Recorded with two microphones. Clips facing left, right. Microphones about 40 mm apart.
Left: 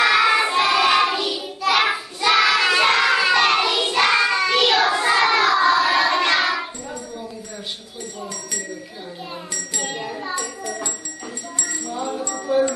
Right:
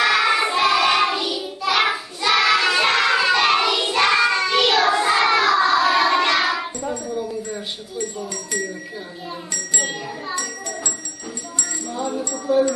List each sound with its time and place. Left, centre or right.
0.0 s child singing: centre
11.9 s music: centre
12.5 s wind chime: left